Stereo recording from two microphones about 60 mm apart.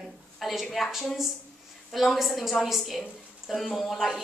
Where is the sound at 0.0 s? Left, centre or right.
Centre.